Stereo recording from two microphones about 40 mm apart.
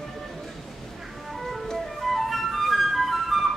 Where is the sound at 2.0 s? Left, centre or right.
Centre.